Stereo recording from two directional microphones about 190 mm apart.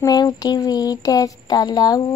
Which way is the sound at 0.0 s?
20° left (ahead or behind).